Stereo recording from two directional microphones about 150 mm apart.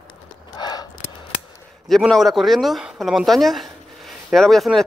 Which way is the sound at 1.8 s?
Centre (ahead or behind).